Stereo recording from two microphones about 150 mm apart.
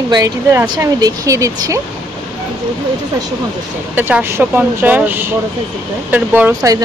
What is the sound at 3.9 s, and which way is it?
Speech, 10° right (ahead or behind).